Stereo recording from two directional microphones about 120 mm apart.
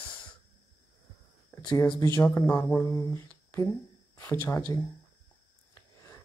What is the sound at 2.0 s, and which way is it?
Speech, 25° left (ahead or behind).